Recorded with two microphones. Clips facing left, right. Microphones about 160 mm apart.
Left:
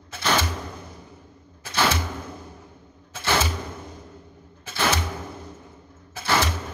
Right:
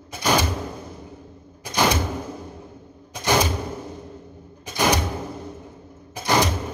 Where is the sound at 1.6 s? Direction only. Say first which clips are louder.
Right 3 dB; 15° right (ahead or behind).